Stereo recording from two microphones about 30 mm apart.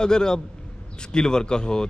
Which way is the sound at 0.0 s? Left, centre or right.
Left.